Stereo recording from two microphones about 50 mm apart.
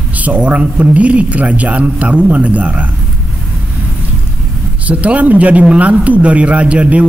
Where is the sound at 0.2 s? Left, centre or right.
Right.